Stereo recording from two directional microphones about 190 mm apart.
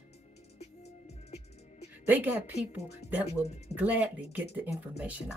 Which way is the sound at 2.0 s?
10° right (ahead or behind).